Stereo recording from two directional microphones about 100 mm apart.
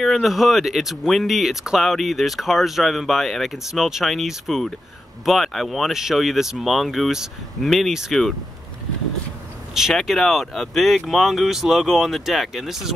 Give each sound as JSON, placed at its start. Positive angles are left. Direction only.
{"t": 0.0, "sound": "speech", "side_deg": 0}
{"t": 9.8, "sound": "speech", "side_deg": 0}